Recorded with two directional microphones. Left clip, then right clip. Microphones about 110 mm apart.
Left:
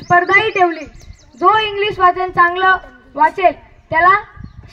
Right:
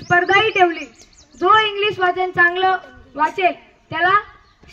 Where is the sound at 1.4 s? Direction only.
40° left (ahead or behind).